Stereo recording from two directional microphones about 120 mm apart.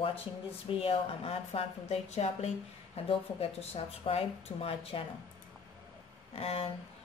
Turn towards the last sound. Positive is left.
turn(degrees=55)  # may be behind; listen again after turning